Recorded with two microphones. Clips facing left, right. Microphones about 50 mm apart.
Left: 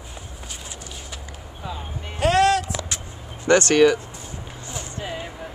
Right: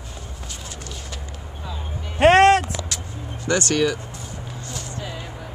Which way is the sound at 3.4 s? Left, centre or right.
Left.